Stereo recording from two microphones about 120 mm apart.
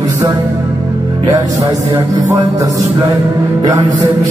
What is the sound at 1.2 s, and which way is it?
Speech, 35° right (ahead or behind).